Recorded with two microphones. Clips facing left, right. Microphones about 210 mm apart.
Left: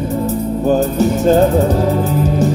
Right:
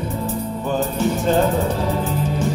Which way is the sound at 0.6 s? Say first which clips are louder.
Left 8 dB; 40° left (ahead or behind).